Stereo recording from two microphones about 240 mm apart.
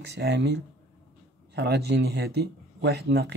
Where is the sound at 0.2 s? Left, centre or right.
Right.